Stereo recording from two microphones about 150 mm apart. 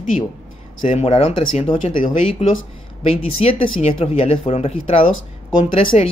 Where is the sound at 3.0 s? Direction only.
40° left (ahead or behind).